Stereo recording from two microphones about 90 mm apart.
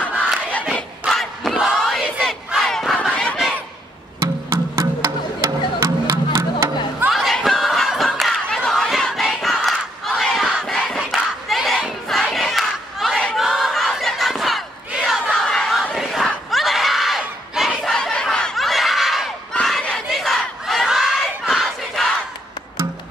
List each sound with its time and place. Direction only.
1.0 s battle cry: centre (ahead or behind)
3.1 s a sound: 15° left (ahead or behind)
4.2 s music: 30° right (ahead or behind)
7.1 s a sound: centre (ahead or behind)
8.5 s battle cry: 5° left (ahead or behind)
11.1 s crowd: centre (ahead or behind)
12.2 s battle cry: 5° left (ahead or behind)
15.0 s crowd: centre (ahead or behind)
19.5 s crowd: 10° left (ahead or behind)